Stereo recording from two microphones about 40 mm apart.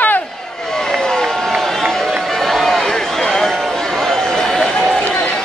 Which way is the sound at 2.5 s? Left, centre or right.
Centre.